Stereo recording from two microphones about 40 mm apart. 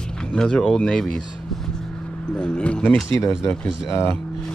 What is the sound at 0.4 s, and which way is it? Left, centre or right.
Speech, centre.